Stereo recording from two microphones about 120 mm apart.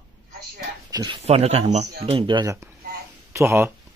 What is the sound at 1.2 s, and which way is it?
Speech, 60° right (ahead or behind).